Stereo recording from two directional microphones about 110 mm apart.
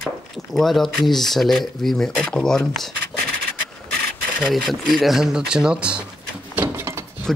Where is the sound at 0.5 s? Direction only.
Centre (ahead or behind).